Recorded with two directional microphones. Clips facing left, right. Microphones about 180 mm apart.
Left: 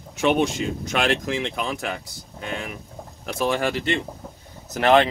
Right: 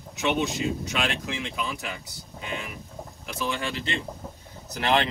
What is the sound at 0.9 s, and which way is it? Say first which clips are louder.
Speech: left 6 dB; 60° left (ahead or behind).